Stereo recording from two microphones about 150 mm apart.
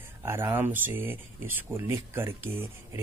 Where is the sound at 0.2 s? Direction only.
15° right (ahead or behind).